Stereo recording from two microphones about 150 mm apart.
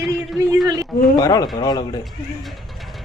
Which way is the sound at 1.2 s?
25° left (ahead or behind).